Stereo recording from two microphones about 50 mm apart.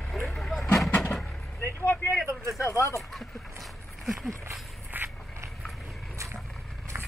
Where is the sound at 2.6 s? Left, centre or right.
Left.